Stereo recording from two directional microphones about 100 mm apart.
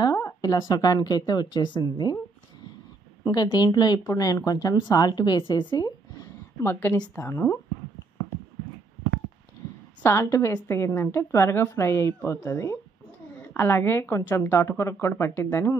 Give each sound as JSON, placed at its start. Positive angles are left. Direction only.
{"t": 0.0, "sound": "a woman's voice", "side_deg": 40}
{"t": 3.3, "sound": "a woman's voice", "side_deg": 45}
{"t": 6.6, "sound": "speech", "side_deg": 25}
{"t": 10.0, "sound": "speech", "side_deg": 30}